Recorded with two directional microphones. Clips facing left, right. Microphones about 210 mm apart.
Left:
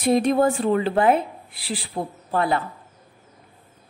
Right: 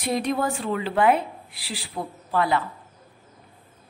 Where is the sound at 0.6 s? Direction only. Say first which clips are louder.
Left 7 dB; 35° left (ahead or behind).